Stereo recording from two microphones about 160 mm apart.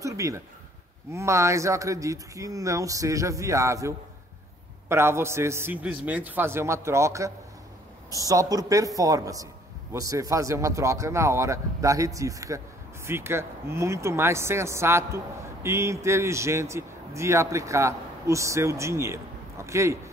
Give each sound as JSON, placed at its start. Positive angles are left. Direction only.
{"t": 0.0, "sound": "a man's voice", "side_deg": -20}